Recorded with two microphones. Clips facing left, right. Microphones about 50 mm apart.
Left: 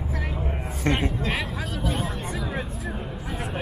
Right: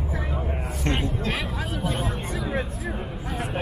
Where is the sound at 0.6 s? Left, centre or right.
Left.